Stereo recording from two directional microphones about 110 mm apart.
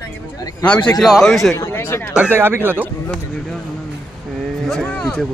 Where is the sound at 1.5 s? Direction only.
25° left (ahead or behind).